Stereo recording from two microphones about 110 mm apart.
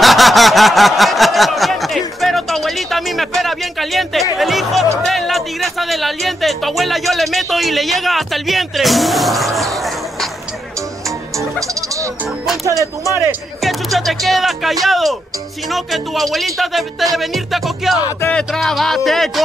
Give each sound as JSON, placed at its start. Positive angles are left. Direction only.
{"t": 0.0, "sound": "a sound", "side_deg": 0}
{"t": 4.4, "sound": "music", "side_deg": 0}
{"t": 5.0, "sound": "speech", "side_deg": 0}
{"t": 9.6, "sound": "a sound", "side_deg": 0}
{"t": 11.1, "sound": "music", "side_deg": -30}
{"t": 13.1, "sound": "speech", "side_deg": -25}
{"t": 13.6, "sound": "speech", "side_deg": 0}